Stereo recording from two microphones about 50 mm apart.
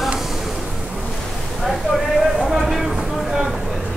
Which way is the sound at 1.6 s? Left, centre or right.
Centre.